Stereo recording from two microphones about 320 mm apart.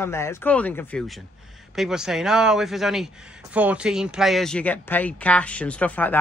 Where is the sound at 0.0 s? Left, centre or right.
Centre.